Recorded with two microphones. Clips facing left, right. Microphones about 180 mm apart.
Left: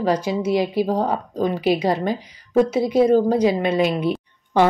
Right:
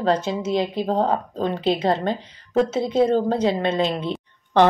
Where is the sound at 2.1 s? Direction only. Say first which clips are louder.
Left 2 dB; 25° right (ahead or behind).